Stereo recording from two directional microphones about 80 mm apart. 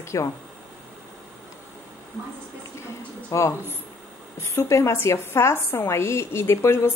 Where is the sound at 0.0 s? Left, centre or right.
Left.